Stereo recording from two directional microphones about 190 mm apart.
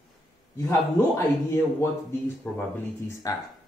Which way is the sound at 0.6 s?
15° left (ahead or behind).